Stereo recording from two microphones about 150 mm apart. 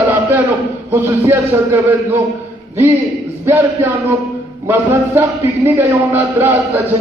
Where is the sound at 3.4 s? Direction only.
20° right (ahead or behind).